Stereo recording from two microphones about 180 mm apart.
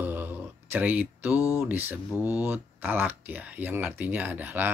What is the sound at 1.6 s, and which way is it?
Speech, 10° right (ahead or behind).